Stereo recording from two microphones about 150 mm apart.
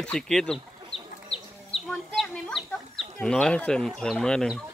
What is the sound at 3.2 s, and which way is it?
Speech, 5° left (ahead or behind).